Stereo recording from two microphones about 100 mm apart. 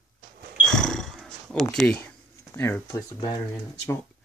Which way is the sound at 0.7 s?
5° left (ahead or behind).